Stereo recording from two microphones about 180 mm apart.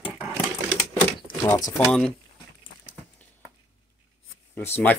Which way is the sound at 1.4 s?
15° left (ahead or behind).